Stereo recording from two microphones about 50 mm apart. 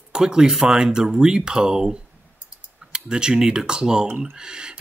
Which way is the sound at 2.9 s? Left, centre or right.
Centre.